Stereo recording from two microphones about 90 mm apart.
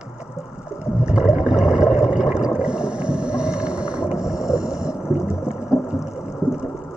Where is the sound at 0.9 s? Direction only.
10° right (ahead or behind).